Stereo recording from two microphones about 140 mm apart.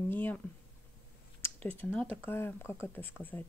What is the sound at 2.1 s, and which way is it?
Speech, 15° left (ahead or behind).